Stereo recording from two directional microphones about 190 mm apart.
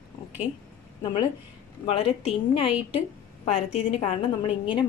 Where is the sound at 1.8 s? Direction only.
30° left (ahead or behind).